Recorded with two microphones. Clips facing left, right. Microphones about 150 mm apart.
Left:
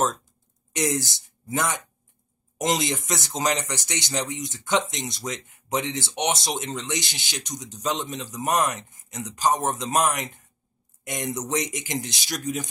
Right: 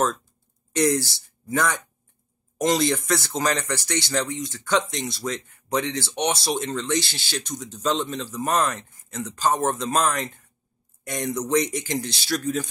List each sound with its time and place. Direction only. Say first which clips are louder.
0.0 s speech: right 1 dB; 20° left (ahead or behind)